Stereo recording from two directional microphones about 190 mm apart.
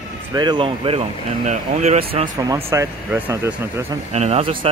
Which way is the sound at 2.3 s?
20° right (ahead or behind).